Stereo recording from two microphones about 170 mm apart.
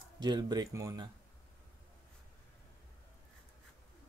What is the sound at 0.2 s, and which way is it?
Speech, 25° right (ahead or behind).